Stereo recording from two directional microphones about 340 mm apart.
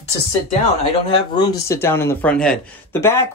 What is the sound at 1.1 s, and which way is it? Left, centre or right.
Speech, centre.